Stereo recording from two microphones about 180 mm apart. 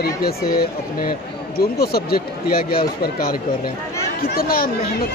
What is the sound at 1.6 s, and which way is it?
Speech, 60° left (ahead or behind).